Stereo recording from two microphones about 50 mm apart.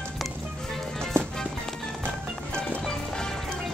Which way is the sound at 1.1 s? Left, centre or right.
Right.